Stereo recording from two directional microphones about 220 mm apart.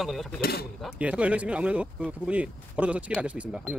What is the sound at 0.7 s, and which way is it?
Speech, 5° right (ahead or behind).